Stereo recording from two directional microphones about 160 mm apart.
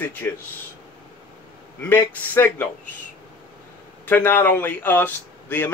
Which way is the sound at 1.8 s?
10° left (ahead or behind).